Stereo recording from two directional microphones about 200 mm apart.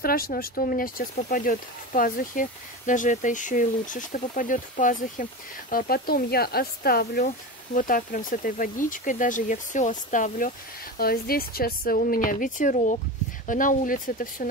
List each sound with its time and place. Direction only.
0.0 s speech: 45° left (ahead or behind)